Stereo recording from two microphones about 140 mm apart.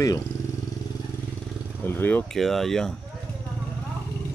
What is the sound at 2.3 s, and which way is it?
Speech, centre (ahead or behind).